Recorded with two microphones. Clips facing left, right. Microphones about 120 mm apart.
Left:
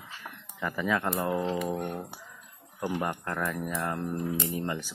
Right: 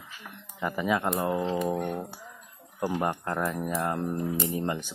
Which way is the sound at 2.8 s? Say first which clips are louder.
Right 3 dB; 25° right (ahead or behind).